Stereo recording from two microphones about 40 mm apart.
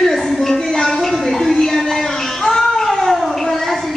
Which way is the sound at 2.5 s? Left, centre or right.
Centre.